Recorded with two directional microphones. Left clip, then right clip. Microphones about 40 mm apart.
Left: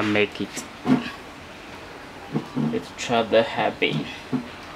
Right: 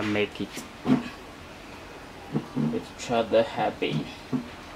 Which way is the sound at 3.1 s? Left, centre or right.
Left.